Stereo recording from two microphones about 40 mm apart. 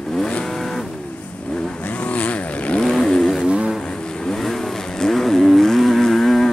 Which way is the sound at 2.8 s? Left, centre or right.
Centre.